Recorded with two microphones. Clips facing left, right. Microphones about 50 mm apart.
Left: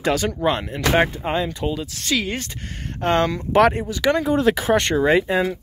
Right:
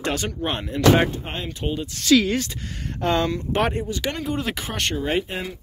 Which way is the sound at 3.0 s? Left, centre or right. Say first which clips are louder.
Left 2 dB; left.